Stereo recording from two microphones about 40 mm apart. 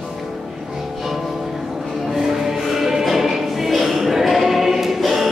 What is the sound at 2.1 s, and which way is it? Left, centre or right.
Music, centre.